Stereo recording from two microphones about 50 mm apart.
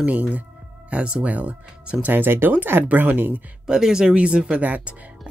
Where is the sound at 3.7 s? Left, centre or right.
Centre.